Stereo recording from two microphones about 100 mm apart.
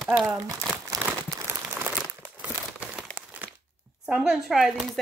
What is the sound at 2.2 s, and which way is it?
Crumpling, 15° right (ahead or behind).